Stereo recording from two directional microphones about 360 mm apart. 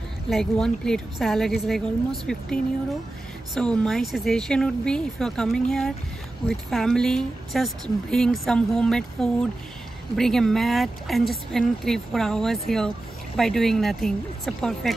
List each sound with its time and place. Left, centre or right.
0.3 s speech: centre
3.5 s speech: centre